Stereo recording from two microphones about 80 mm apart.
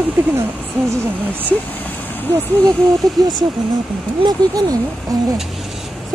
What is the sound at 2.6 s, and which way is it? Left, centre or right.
Speech, right.